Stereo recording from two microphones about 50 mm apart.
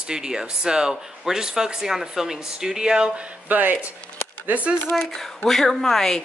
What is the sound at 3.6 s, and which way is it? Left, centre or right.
Speech, right.